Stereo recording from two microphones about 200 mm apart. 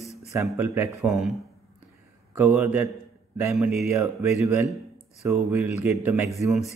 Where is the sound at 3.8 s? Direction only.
15° right (ahead or behind).